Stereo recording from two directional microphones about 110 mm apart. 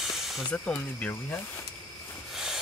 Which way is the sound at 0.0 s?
5° right (ahead or behind).